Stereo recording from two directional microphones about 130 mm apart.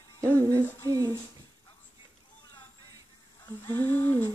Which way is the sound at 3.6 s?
15° left (ahead or behind).